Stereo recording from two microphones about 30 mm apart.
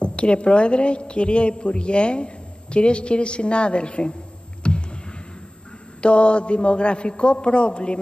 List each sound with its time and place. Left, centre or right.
0.0 s a woman's voice: left
4.6 s a sound: left
5.9 s a woman's voice: left